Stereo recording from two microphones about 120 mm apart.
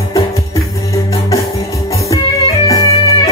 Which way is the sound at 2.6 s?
30° left (ahead or behind).